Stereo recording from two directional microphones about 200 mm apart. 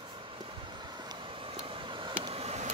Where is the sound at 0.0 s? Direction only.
25° right (ahead or behind).